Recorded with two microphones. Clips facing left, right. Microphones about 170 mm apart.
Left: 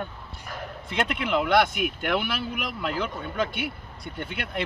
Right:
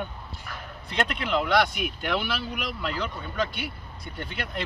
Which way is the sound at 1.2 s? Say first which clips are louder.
Left 2 dB; 55° left (ahead or behind).